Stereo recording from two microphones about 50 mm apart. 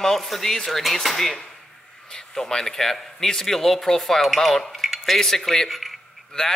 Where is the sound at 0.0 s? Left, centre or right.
Centre.